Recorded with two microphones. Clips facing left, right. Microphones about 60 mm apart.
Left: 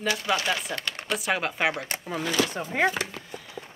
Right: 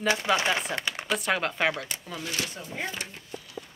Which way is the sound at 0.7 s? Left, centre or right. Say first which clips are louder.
Right 1 dB; centre.